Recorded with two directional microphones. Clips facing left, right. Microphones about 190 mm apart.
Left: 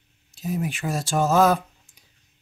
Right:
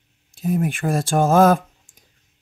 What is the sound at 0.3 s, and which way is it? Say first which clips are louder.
Speech: right 6 dB; 55° right (ahead or behind).